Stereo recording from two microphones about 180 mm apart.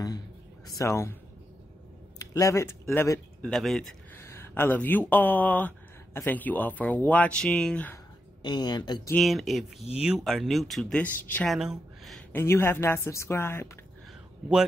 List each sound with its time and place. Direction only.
0.7 s a woman's voice: 20° left (ahead or behind)
2.3 s a woman's voice: 15° left (ahead or behind)
3.5 s speech: centre (ahead or behind)
4.2 s speech: 10° left (ahead or behind)
8.4 s speech: 25° left (ahead or behind)
9.1 s speech: centre (ahead or behind)
12.3 s a woman's voice: 10° left (ahead or behind)